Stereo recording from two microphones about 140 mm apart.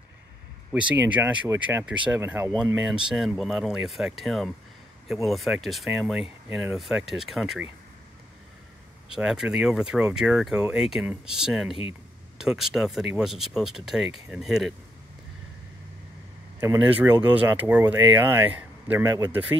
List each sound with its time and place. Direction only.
0.7 s speech: 10° right (ahead or behind)
2.7 s speech: 5° right (ahead or behind)
9.1 s speech: 5° right (ahead or behind)
16.5 s speech: 15° right (ahead or behind)
19.0 s speech: 25° right (ahead or behind)